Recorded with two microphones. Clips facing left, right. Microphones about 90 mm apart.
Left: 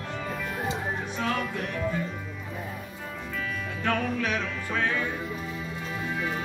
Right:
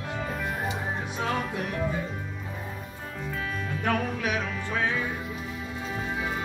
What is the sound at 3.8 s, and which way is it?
Music, 10° right (ahead or behind).